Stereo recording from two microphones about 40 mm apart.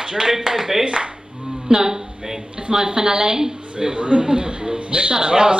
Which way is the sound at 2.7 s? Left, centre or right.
Centre.